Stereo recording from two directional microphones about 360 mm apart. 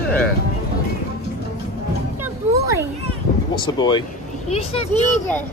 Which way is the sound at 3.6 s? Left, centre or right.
Centre.